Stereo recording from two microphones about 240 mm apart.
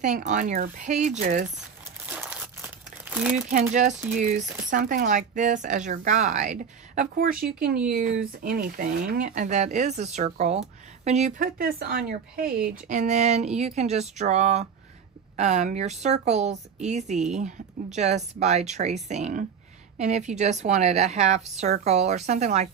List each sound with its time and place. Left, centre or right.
0.0 s speech: right
2.0 s crumpling: centre
3.4 s speech: right